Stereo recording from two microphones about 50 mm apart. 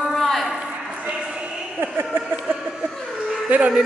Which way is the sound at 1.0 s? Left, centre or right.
Right.